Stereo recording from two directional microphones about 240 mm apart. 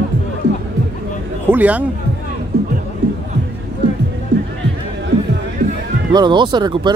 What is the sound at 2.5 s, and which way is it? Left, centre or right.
Music, right.